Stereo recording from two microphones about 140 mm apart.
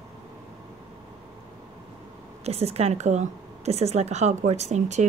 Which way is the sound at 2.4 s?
45° right (ahead or behind).